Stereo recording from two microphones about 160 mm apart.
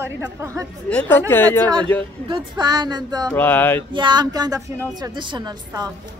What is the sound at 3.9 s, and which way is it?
Speech, 30° right (ahead or behind).